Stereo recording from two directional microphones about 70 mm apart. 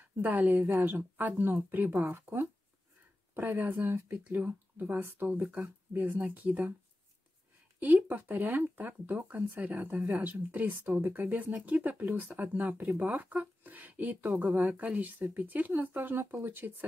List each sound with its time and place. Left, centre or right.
0.0 s speech: right
7.8 s speech: right